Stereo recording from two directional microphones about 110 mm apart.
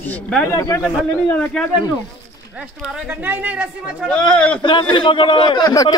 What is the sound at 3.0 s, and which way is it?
Speech, 15° right (ahead or behind).